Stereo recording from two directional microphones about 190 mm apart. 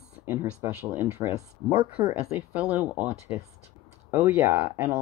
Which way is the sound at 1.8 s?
25° right (ahead or behind).